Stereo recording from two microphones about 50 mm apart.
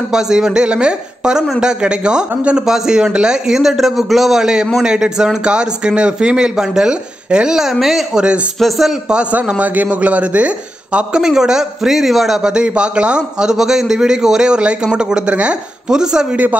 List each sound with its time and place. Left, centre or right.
0.1 s a woman's voice: centre
7.8 s speech: centre
9.1 s speech: right
11.2 s a woman's voice: centre
12.4 s a woman's voice: centre